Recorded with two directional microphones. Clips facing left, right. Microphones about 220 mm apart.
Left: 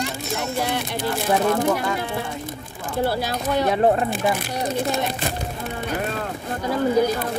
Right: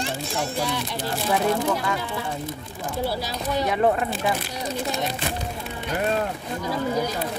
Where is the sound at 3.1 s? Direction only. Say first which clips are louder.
Left 4 dB; 55° left (ahead or behind).